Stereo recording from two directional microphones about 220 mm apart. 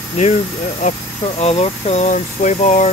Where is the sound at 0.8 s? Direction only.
30° left (ahead or behind).